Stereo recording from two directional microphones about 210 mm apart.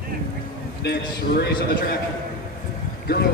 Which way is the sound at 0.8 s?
50° left (ahead or behind).